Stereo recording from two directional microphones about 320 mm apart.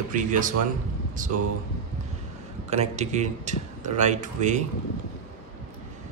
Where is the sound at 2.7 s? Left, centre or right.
Right.